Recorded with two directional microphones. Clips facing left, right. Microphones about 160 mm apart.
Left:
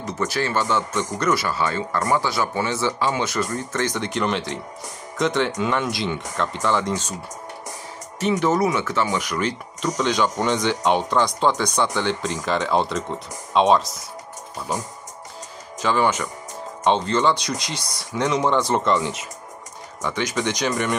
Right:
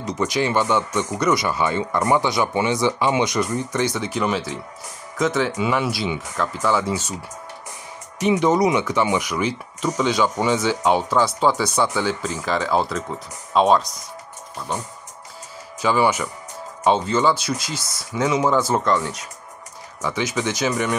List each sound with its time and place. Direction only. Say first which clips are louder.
0.0 s speech: right 3 dB; 15° right (ahead or behind)
8.2 s speech: right 2 dB; 15° right (ahead or behind)
15.8 s speech: right 2 dB; 10° right (ahead or behind)